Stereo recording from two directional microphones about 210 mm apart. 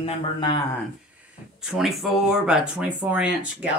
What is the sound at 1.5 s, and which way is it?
Speech, centre (ahead or behind).